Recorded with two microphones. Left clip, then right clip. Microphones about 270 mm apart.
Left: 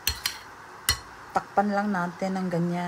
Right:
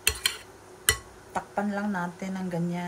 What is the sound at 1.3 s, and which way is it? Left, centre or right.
Speech, centre.